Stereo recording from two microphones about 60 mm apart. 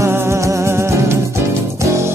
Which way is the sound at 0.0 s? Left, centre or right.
Right.